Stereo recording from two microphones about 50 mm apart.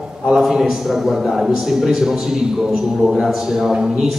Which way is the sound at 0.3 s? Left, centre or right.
Centre.